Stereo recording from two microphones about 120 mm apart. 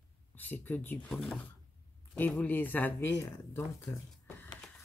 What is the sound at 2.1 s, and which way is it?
Speech, 15° left (ahead or behind).